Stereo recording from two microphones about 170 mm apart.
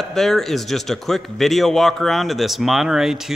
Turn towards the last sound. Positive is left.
turn(degrees=0)  # may be behind; listen again after turning